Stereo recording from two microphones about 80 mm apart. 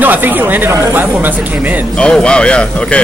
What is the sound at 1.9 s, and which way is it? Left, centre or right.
Speech, centre.